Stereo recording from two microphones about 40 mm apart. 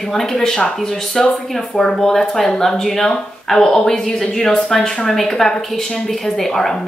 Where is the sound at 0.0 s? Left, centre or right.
Centre.